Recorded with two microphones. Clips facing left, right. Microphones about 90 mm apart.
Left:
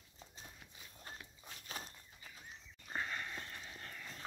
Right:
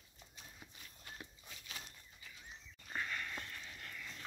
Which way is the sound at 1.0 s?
35° left (ahead or behind).